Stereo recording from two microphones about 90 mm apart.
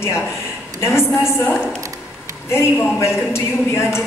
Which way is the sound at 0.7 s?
30° left (ahead or behind).